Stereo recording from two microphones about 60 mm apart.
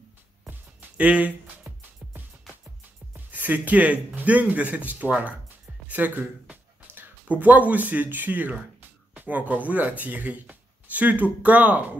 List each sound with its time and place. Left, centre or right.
0.5 s music: right
1.6 s music: right
3.3 s speech: right